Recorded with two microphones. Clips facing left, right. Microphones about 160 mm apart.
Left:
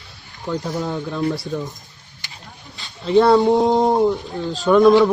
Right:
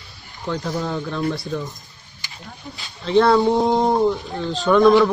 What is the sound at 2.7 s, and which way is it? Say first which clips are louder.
Speech: left 2 dB; 10° left (ahead or behind).